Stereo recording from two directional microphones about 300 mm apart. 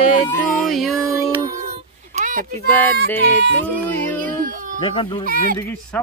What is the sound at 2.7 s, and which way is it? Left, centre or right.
Music, centre.